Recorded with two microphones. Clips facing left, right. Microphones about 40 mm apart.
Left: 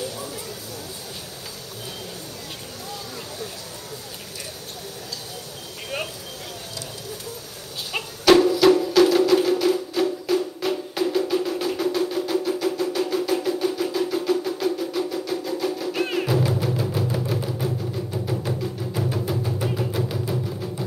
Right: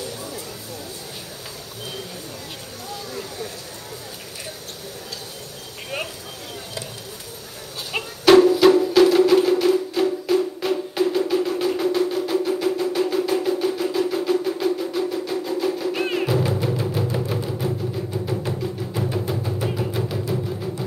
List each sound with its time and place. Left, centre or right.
8.4 s music: right; by 20.8 s centre